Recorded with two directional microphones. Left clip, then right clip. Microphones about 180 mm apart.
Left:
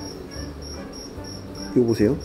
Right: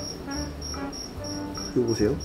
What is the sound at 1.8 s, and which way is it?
Speech, 30° left (ahead or behind).